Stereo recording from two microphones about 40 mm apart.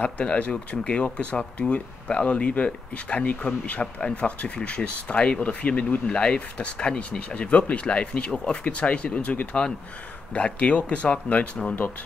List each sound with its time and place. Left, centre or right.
0.0 s speech: left